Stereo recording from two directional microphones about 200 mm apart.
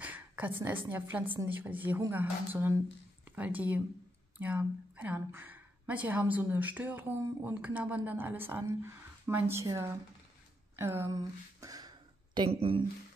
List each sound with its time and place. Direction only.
0.0 s a sound: 5° right (ahead or behind)
0.6 s a woman's voice: 10° right (ahead or behind)
12.4 s speech: 30° right (ahead or behind)